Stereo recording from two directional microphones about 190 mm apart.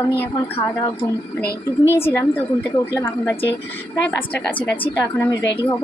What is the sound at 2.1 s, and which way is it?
Speech, 15° left (ahead or behind).